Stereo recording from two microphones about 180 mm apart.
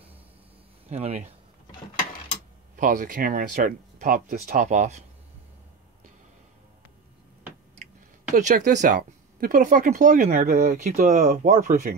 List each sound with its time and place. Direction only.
0.8 s speech: 35° right (ahead or behind)
2.7 s speech: 50° right (ahead or behind)
8.4 s speech: 45° right (ahead or behind)